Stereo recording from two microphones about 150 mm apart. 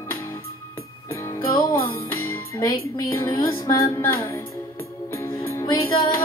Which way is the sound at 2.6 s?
25° left (ahead or behind).